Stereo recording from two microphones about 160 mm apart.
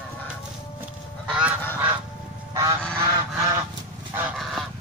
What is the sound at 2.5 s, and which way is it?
Goose, 20° right (ahead or behind).